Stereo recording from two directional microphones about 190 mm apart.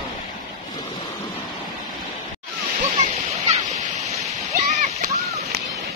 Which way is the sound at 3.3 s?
35° right (ahead or behind).